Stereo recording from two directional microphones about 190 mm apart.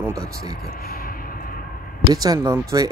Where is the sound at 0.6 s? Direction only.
50° left (ahead or behind).